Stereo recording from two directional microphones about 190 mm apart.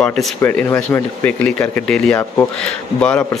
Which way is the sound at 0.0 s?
5° left (ahead or behind).